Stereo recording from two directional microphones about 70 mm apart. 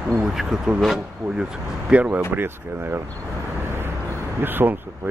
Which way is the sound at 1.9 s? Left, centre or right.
Centre.